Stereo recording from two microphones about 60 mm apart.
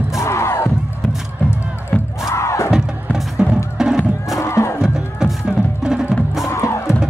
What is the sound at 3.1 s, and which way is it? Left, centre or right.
Music, centre.